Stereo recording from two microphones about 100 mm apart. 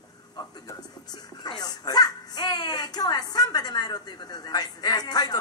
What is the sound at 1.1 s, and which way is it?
A child's voice, 45° left (ahead or behind).